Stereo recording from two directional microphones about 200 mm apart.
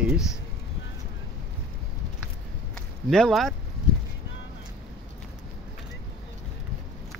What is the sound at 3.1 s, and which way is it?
Speech, centre (ahead or behind).